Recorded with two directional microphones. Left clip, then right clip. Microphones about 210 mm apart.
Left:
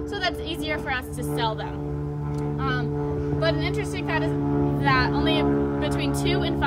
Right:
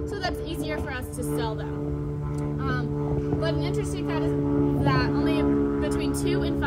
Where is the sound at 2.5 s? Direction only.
15° left (ahead or behind).